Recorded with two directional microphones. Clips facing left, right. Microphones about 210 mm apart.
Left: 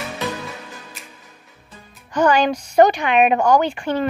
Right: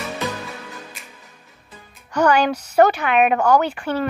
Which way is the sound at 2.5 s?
10° left (ahead or behind).